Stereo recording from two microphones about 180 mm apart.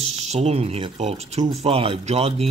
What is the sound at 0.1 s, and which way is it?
Speech, 35° right (ahead or behind).